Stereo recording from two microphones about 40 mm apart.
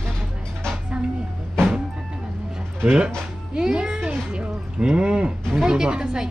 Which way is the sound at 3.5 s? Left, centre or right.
Right.